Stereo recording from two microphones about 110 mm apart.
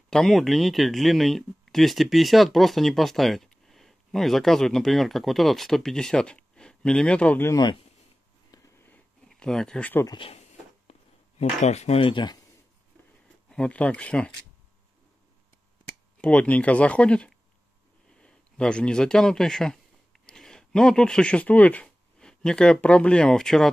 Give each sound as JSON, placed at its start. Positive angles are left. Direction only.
{"t": 0.1, "sound": "speech", "side_deg": 0}
{"t": 8.7, "sound": "a sound", "side_deg": 15}
{"t": 9.3, "sound": "speech", "side_deg": 5}
{"t": 10.9, "sound": "a sound", "side_deg": 85}
{"t": 12.0, "sound": "speech", "side_deg": 45}
{"t": 13.5, "sound": "speech", "side_deg": 10}
{"t": 16.2, "sound": "speech", "side_deg": 10}